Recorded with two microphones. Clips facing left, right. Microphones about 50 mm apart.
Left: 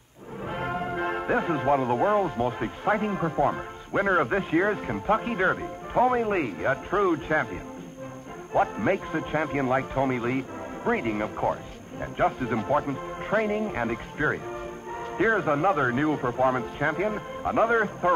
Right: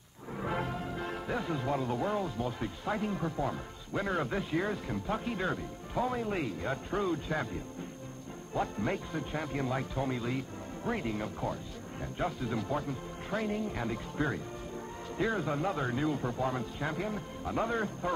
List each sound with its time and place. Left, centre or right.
0.5 s speech: left
8.5 s speech: left